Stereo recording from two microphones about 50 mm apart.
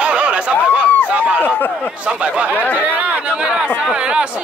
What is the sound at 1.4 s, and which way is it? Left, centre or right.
Speech, left.